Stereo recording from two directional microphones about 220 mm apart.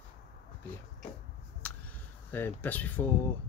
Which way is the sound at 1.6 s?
5° left (ahead or behind).